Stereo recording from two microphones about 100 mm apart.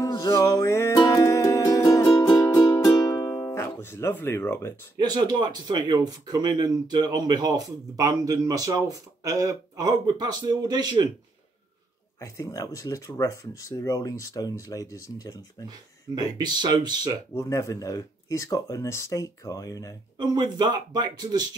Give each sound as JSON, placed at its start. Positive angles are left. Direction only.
{"t": 0.3, "sound": "music", "side_deg": 30}
{"t": 3.3, "sound": "music", "side_deg": 30}
{"t": 4.9, "sound": "speech", "side_deg": -45}
{"t": 12.2, "sound": "speech", "side_deg": 35}
{"t": 16.2, "sound": "speech", "side_deg": -45}
{"t": 17.3, "sound": "speech", "side_deg": 30}
{"t": 20.2, "sound": "speech", "side_deg": -45}